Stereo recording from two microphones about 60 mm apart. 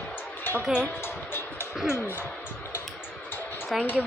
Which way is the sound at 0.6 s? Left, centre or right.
Centre.